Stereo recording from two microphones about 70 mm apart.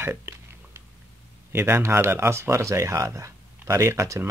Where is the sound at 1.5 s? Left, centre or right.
Right.